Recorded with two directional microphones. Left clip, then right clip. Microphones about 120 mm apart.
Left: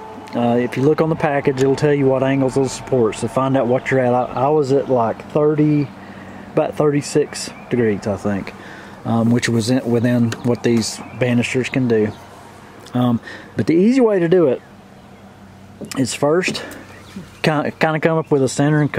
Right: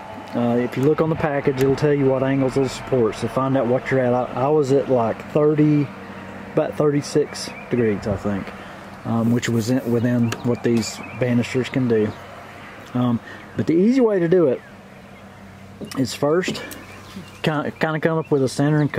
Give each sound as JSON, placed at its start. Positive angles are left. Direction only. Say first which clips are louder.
{"t": 0.3, "sound": "speech", "louder": "left 4 dB", "side_deg": 20}
{"t": 4.3, "sound": "speech", "louder": "left 2 dB", "side_deg": 0}
{"t": 6.5, "sound": "speech", "louder": "left 3 dB", "side_deg": 15}
{"t": 15.9, "sound": "speech", "louder": "left 3 dB", "side_deg": 15}